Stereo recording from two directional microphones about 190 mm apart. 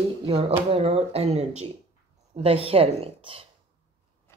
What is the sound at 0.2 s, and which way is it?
Speech, 30° right (ahead or behind).